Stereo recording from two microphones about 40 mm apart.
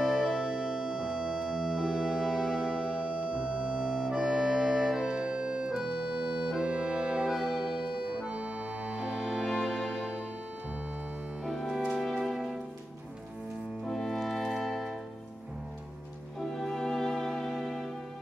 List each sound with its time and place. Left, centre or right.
0.3 s organ: centre
3.0 s music: right
7.2 s music: centre
7.5 s accordion: centre
9.4 s music: centre
11.4 s music: centre
13.8 s music: centre
16.3 s music: centre